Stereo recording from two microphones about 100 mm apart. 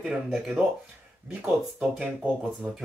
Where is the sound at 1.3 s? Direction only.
15° right (ahead or behind).